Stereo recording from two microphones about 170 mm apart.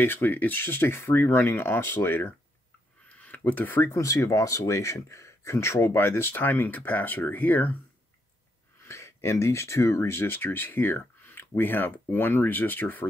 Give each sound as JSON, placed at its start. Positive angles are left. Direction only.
{"t": 0.0, "sound": "speech", "side_deg": 10}
{"t": 8.8, "sound": "speech", "side_deg": 15}